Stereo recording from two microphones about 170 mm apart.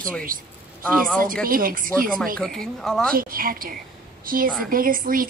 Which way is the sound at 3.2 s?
55° right (ahead or behind).